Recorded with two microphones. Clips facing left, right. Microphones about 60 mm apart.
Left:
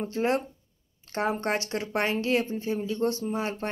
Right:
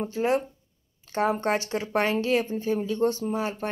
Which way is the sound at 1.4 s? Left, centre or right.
Right.